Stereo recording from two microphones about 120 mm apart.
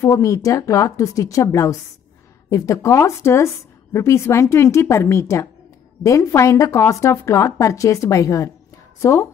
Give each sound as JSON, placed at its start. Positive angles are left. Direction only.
{"t": 0.0, "sound": "a woman's voice", "side_deg": 30}